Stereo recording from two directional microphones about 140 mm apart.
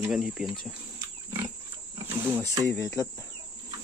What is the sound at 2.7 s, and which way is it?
Speech, 15° left (ahead or behind).